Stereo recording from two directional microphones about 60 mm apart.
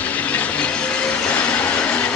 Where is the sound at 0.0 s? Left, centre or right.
Left.